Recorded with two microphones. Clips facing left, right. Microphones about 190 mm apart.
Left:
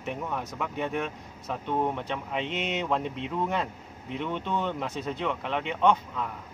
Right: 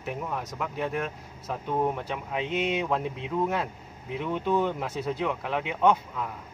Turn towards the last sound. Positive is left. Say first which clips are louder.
# right 1 dB
turn(degrees=-5)  # may be behind; listen again after turning